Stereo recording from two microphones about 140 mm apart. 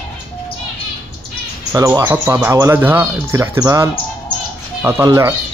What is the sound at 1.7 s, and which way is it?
Speech, 20° right (ahead or behind).